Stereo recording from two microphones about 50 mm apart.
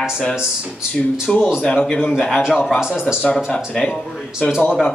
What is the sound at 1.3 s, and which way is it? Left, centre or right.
Speech, centre.